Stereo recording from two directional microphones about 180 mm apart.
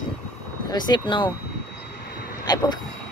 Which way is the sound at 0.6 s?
25° left (ahead or behind).